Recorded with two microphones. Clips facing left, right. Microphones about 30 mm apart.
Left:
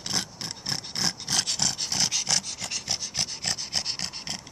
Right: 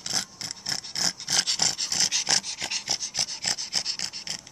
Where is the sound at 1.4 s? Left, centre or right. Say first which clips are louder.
Right 3 dB; centre.